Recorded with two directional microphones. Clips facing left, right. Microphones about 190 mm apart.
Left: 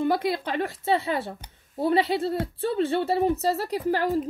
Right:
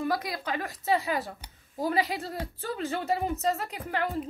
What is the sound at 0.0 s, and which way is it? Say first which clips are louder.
A woman's voice: left 6 dB; 30° left (ahead or behind).